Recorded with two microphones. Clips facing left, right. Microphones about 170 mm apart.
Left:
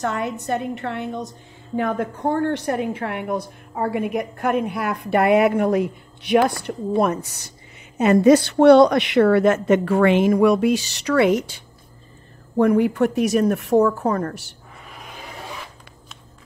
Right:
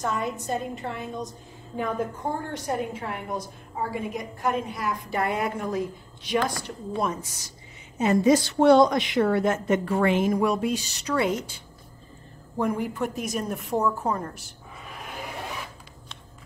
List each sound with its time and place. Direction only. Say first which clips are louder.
0.0 s a woman's voice: left 4 dB; 70° left (ahead or behind)